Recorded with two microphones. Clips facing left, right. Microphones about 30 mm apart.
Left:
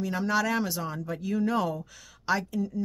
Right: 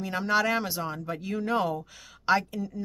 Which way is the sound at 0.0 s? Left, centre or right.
Right.